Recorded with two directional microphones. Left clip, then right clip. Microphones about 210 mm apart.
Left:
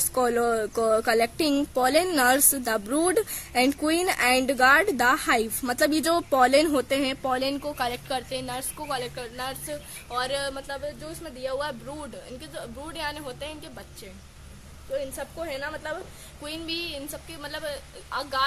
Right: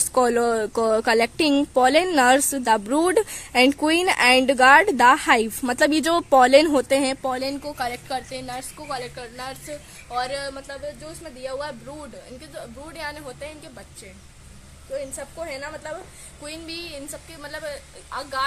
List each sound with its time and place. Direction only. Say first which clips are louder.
0.1 s a woman's voice: right 4 dB; 55° right (ahead or behind)
7.2 s speech: right 1 dB; 30° right (ahead or behind)
7.6 s a woman's voice: right 1 dB; 10° right (ahead or behind)
15.1 s speech: right 1 dB; 5° right (ahead or behind)
16.4 s a sound: left 2 dB; 15° left (ahead or behind)
17.4 s speech: right 1 dB; centre (ahead or behind)